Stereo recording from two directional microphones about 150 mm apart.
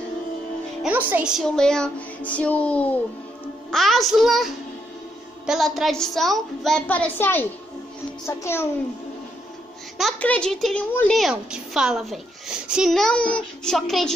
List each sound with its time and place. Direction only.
0.8 s a woman's voice: 10° right (ahead or behind)
5.5 s a woman's voice: centre (ahead or behind); by 8.6 s 15° left (ahead or behind)
10.2 s a child's voice: 10° left (ahead or behind)